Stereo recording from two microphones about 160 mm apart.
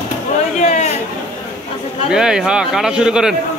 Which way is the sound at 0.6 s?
45° left (ahead or behind).